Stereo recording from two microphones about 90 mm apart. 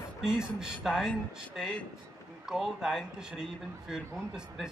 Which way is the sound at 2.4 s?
5° right (ahead or behind).